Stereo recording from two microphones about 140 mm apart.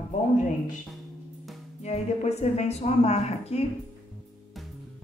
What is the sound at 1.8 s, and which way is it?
Speech, 50° left (ahead or behind).